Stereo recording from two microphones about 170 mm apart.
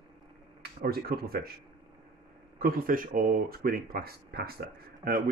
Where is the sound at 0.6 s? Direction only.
65° right (ahead or behind).